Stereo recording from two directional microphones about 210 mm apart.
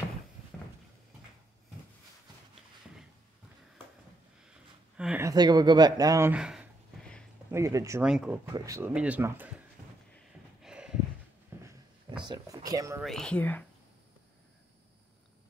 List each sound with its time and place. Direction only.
4.9 s speech: 5° right (ahead or behind)
5.3 s speech: 20° right (ahead or behind); by 7.2 s centre (ahead or behind)
7.5 s speech: 15° right (ahead or behind)
8.1 s speech: 5° right (ahead or behind)
8.5 s speech: 15° right (ahead or behind)
10.6 s a sound: 5° right (ahead or behind)
13.0 s speech: 5° left (ahead or behind)